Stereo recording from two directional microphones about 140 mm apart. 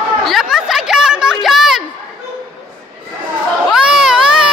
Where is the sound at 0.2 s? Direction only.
Centre (ahead or behind).